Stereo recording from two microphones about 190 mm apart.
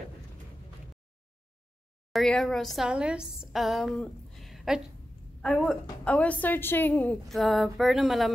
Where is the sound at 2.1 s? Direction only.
Centre (ahead or behind).